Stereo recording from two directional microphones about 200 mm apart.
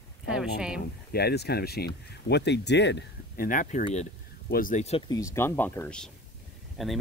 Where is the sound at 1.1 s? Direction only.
55° left (ahead or behind).